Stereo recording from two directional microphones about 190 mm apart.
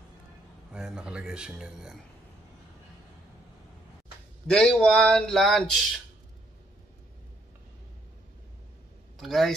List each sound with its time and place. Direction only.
0.7 s speech: 5° right (ahead or behind)
4.5 s speech: 5° left (ahead or behind)
9.2 s speech: centre (ahead or behind)